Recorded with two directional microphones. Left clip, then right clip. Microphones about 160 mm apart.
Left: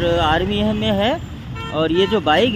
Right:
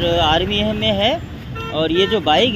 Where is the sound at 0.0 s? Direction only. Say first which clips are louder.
Right 1 dB; 20° left (ahead or behind).